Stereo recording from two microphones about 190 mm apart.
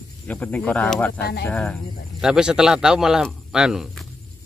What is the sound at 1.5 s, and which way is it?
Speech, 5° left (ahead or behind).